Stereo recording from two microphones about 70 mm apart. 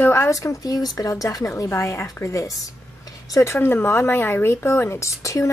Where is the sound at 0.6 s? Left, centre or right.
Left.